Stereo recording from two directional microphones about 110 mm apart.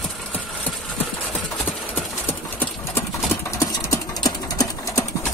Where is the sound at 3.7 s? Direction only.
30° left (ahead or behind).